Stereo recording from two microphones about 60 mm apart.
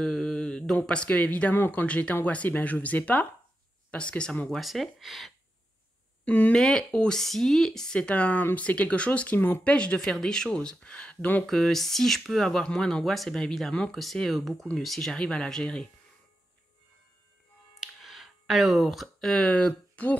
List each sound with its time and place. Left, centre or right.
0.0 s mantra: centre
0.8 s speech: left
4.5 s speech: centre
6.2 s speech: left
6.5 s speech: centre; by 9.8 s left
9.8 s speech: centre
11.4 s speech: centre
17.7 s a sound: centre
19.2 s speech: centre